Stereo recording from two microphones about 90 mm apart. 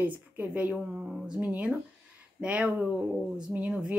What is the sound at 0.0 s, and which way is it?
A woman's voice, 15° right (ahead or behind).